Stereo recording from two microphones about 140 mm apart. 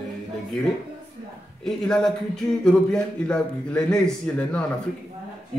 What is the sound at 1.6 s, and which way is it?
Speech, 5° left (ahead or behind).